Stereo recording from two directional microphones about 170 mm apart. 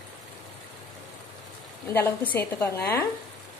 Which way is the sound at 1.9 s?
10° left (ahead or behind).